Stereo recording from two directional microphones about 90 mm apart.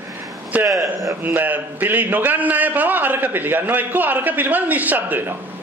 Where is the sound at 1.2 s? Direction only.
20° right (ahead or behind).